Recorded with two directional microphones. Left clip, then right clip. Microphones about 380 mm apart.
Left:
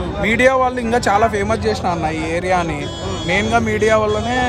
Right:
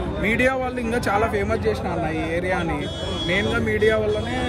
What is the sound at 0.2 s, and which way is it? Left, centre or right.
Speech, centre.